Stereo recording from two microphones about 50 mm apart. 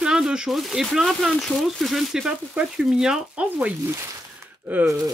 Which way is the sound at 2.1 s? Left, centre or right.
Centre.